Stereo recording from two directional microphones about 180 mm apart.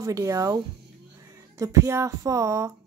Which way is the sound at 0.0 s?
15° right (ahead or behind).